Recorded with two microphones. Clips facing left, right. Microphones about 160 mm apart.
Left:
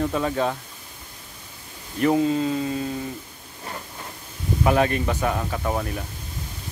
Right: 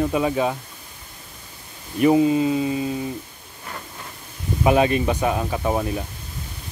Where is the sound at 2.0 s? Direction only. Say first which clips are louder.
Right 4 dB; 15° right (ahead or behind).